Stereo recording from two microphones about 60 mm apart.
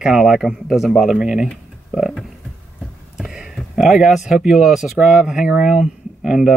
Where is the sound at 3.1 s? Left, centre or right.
Centre.